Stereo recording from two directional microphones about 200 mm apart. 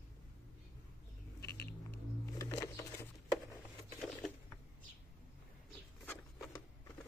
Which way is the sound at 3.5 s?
5° left (ahead or behind).